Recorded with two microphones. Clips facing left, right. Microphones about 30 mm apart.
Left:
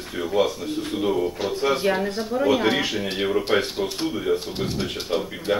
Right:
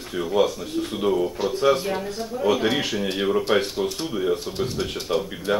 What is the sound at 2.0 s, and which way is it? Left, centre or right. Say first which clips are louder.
Speech: left 4 dB; left.